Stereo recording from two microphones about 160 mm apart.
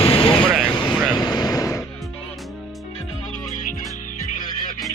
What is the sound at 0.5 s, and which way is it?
Vehicle, centre (ahead or behind).